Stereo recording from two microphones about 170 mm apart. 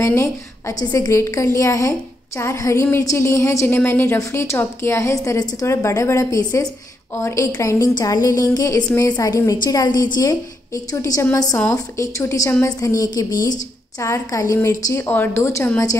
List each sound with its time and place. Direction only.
0.0 s a woman's voice: 15° left (ahead or behind)